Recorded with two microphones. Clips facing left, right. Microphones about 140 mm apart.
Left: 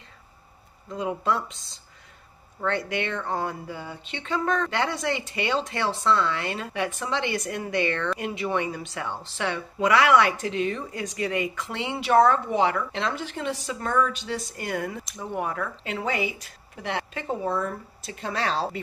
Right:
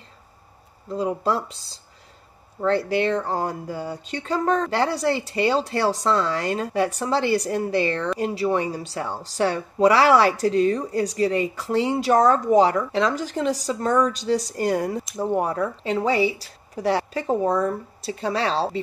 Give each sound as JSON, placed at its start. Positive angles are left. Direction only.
{"t": 0.8, "sound": "speech", "side_deg": -35}